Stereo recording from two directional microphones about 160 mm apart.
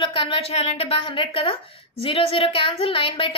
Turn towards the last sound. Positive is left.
turn(degrees=35)  # may be behind; listen again after turning